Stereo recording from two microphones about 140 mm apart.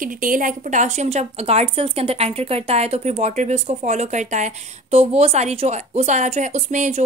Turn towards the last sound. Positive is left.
turn(degrees=-55)  # may be behind; listen again after turning